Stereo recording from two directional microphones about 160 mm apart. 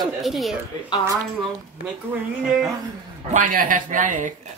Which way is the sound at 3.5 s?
55° right (ahead or behind).